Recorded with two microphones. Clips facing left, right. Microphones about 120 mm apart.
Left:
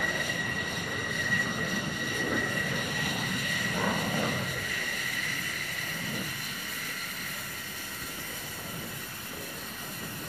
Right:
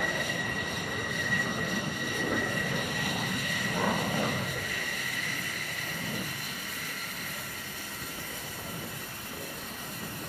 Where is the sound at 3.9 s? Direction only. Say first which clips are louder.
Even; 15° right (ahead or behind).